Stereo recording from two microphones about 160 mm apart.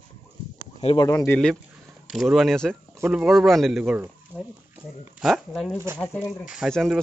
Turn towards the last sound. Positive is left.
turn(degrees=0)  # may be behind; listen again after turning